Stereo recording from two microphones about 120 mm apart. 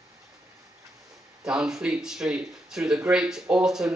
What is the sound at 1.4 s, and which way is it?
Speech, 5° right (ahead or behind).